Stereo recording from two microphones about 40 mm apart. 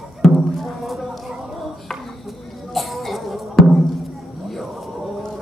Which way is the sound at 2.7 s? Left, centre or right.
Centre.